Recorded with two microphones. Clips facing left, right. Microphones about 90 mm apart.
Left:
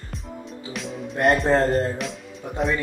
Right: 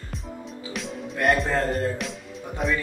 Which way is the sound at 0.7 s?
Centre (ahead or behind).